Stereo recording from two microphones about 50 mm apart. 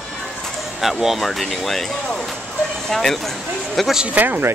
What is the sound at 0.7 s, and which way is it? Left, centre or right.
Speech, centre.